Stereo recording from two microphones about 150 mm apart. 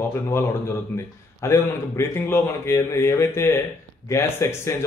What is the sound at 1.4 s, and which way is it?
A man's voice, 20° left (ahead or behind).